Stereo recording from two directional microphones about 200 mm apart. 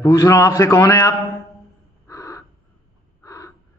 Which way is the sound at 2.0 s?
15° left (ahead or behind).